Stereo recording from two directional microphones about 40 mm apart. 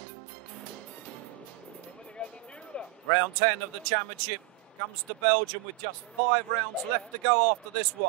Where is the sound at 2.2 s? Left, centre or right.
Left.